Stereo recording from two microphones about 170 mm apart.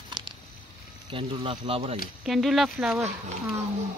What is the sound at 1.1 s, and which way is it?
Speech, 30° right (ahead or behind).